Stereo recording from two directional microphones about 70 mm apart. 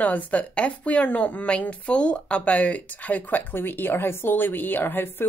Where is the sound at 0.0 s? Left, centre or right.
Left.